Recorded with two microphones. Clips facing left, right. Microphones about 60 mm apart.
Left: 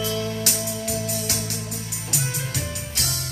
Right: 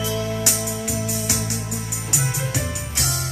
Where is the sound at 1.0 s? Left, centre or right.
Centre.